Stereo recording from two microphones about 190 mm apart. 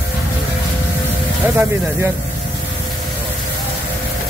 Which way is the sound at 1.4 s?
10° right (ahead or behind).